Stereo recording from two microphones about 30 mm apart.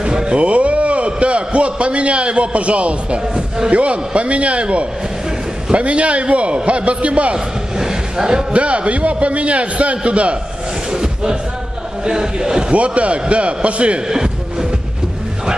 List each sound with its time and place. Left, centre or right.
0.0 s a sound: right
0.4 s a man's voice: right
3.3 s speech: right
3.7 s a man's voice: right
7.3 s a man's voice: right
8.5 s a man's voice: right
10.9 s a sound: right
12.0 s speech: right
12.7 s a man's voice: right
14.0 s music: centre